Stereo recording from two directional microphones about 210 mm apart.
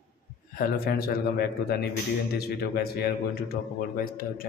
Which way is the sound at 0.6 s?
45° left (ahead or behind).